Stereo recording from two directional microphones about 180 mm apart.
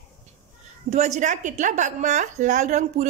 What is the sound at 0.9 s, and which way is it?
A woman's voice, 40° right (ahead or behind).